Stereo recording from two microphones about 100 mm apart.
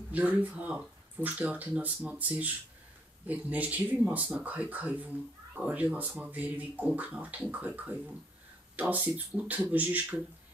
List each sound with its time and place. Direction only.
0.1 s speech: 15° right (ahead or behind)